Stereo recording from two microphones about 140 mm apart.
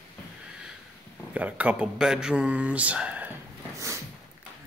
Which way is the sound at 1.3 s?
10° right (ahead or behind).